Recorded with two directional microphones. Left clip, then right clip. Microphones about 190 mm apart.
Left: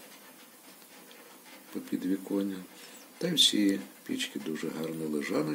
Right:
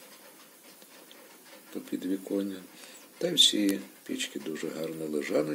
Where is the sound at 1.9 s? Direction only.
20° left (ahead or behind).